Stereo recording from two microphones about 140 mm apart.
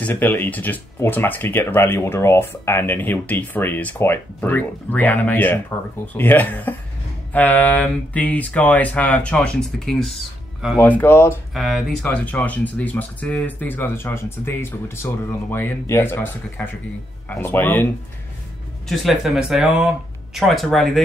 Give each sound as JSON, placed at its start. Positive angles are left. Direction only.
{"t": 0.0, "sound": "speech", "side_deg": 15}
{"t": 10.8, "sound": "speech", "side_deg": 15}
{"t": 11.5, "sound": "speech", "side_deg": 0}
{"t": 18.9, "sound": "speech", "side_deg": 0}